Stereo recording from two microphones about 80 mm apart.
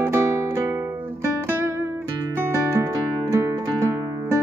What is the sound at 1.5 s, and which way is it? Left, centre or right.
Music, right.